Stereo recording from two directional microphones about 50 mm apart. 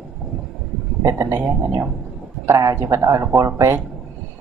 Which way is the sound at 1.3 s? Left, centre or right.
Right.